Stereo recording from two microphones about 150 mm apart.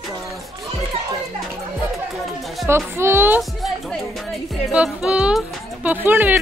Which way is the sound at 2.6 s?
15° right (ahead or behind).